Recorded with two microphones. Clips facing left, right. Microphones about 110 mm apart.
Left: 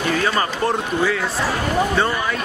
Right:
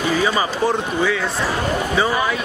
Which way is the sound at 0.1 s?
5° right (ahead or behind).